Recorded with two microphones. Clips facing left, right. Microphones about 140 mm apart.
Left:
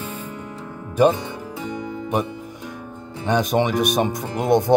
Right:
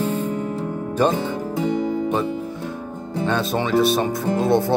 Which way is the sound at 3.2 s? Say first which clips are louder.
Left 3 dB; 15° left (ahead or behind).